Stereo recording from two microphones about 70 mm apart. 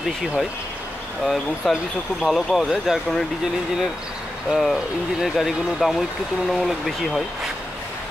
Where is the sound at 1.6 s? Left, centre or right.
Centre.